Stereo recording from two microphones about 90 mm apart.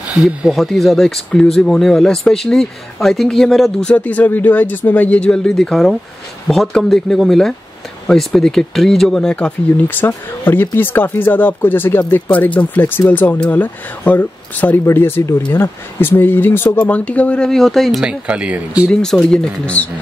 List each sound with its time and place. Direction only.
0.2 s speech: centre (ahead or behind)
3.9 s speech: 15° left (ahead or behind)
17.5 s speech: centre (ahead or behind)
18.0 s speech: 10° right (ahead or behind)
18.9 s speech: 5° left (ahead or behind)